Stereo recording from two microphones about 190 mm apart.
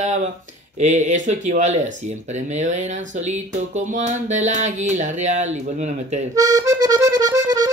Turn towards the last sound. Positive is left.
turn(degrees=-20)  # may be behind; listen again after turning